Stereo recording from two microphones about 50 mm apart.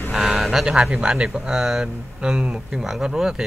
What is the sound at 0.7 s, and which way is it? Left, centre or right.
Speech, centre.